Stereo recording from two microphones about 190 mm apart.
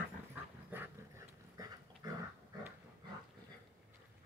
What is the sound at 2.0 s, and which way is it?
Dog, 20° right (ahead or behind).